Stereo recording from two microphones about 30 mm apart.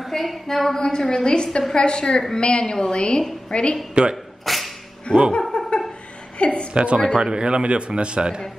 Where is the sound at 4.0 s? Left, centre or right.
Right.